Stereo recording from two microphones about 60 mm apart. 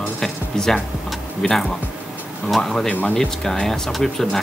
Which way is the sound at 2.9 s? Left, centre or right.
Left.